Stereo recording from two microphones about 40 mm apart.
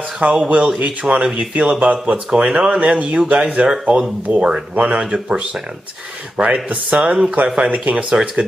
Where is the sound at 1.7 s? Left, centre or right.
Right.